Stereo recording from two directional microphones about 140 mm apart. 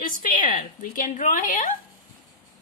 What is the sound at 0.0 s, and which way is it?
A woman's voice, 75° left (ahead or behind).